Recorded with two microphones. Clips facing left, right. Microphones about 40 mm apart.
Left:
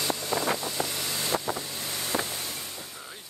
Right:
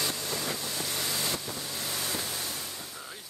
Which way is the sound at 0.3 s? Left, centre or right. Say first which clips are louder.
Left 6 dB; left.